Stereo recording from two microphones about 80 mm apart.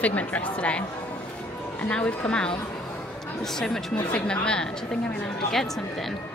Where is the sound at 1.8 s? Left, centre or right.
Centre.